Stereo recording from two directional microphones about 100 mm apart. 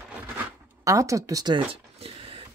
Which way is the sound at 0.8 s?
35° right (ahead or behind).